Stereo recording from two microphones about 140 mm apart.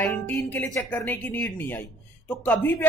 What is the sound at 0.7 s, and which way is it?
Speech, 15° left (ahead or behind).